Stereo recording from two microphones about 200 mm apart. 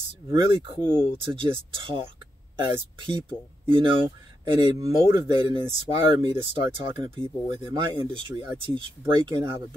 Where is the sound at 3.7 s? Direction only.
25° right (ahead or behind).